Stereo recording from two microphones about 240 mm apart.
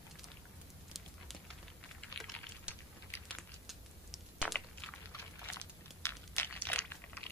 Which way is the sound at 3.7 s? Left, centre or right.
Centre.